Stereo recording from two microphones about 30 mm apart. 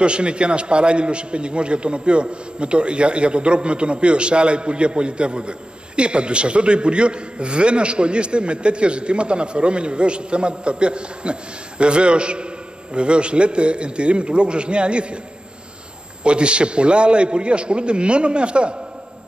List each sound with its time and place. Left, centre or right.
0.0 s a man's voice: right
16.3 s a man's voice: right